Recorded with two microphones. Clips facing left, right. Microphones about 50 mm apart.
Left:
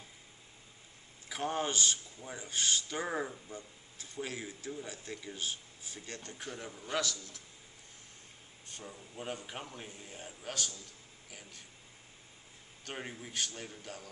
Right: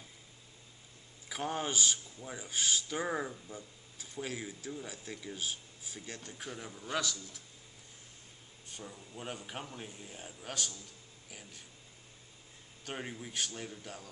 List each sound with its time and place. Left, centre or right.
1.3 s a man's voice: centre
3.5 s a sound: centre
4.2 s a man's voice: centre
8.8 s a man's voice: centre
10.5 s speech: centre
12.8 s a man's voice: centre